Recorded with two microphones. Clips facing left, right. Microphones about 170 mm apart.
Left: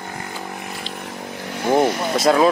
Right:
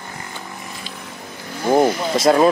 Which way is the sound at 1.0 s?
70° left (ahead or behind).